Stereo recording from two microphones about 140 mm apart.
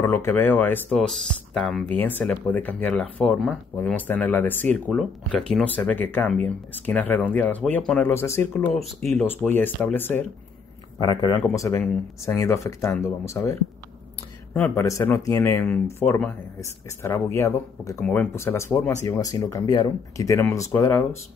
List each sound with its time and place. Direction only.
0.0 s speech: 15° left (ahead or behind); by 1.9 s centre (ahead or behind)
1.9 s speech: 15° left (ahead or behind)
8.7 s speech: centre (ahead or behind)
9.1 s speech: 15° left (ahead or behind)
11.0 s speech: 30° left (ahead or behind)
11.3 s speech: 20° left (ahead or behind)